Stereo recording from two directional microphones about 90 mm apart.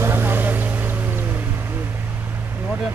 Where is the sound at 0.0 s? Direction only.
25° right (ahead or behind).